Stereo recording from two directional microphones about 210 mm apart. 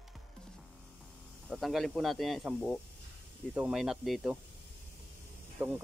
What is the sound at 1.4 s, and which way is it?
Speech, centre (ahead or behind).